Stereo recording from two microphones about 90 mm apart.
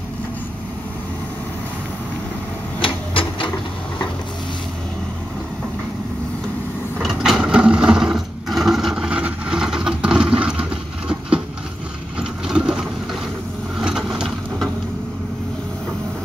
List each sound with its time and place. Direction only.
2.8 s printer: 70° left (ahead or behind)
7.0 s sewing machine: 5° right (ahead or behind)
12.2 s a sound: 10° right (ahead or behind)